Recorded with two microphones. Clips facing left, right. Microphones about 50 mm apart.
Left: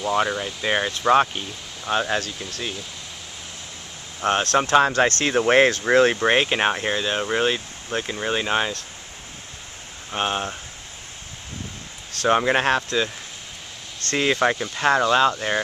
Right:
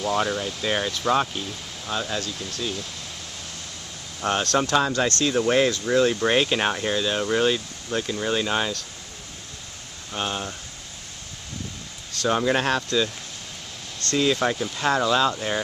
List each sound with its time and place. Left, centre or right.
0.0 s speech: centre; by 1.5 s left
1.9 s speech: left
4.2 s speech: left
6.1 s speech: left
10.1 s speech: left
12.2 s speech: left